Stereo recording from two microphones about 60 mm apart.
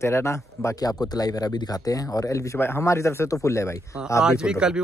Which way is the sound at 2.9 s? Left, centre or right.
Left.